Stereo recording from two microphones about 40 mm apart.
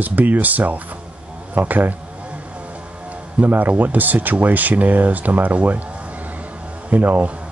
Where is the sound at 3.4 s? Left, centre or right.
Right.